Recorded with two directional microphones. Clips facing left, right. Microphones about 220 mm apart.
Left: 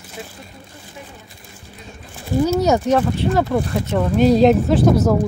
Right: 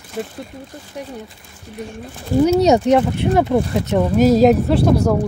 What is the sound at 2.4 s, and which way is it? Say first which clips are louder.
Speech: right 4 dB; 20° right (ahead or behind).